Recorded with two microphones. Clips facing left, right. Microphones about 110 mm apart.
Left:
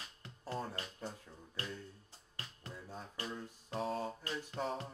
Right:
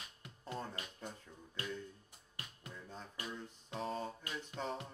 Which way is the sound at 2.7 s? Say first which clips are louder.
Left 2 dB; 10° left (ahead or behind).